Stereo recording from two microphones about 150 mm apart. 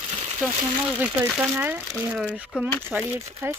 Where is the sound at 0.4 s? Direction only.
10° right (ahead or behind).